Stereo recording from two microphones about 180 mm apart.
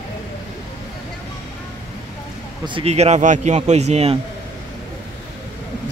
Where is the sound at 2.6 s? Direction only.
30° right (ahead or behind).